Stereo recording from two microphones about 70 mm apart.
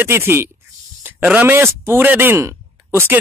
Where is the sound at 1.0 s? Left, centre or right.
Right.